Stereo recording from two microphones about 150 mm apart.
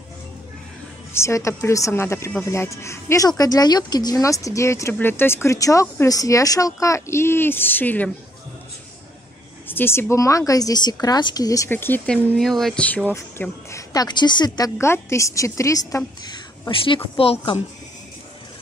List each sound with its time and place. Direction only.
1.1 s a woman's voice: 20° left (ahead or behind)
9.7 s a woman's voice: 15° left (ahead or behind)
12.4 s speech: centre (ahead or behind)
13.1 s a woman's voice: 20° left (ahead or behind)
16.3 s a sound: 30° left (ahead or behind)
17.2 s speech: 40° left (ahead or behind)